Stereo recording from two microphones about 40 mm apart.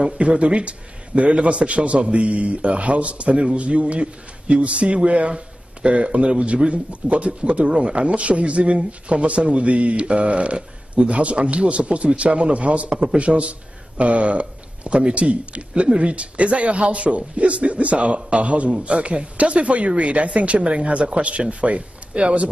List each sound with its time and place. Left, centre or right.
0.0 s a man's voice: right